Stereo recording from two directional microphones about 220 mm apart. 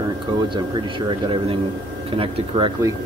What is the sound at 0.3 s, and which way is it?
Speech, 20° right (ahead or behind).